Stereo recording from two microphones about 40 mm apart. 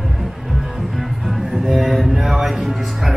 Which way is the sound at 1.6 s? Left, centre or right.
Centre.